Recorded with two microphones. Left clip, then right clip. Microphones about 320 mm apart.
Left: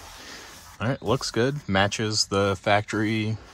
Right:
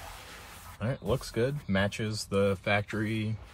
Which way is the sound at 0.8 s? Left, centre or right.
Left.